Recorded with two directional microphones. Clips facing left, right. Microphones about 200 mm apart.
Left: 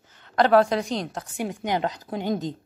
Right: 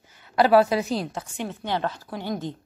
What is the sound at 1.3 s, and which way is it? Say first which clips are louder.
Speech: left 3 dB; 15° left (ahead or behind).